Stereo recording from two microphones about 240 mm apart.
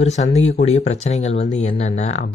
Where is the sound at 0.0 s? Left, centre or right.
Left.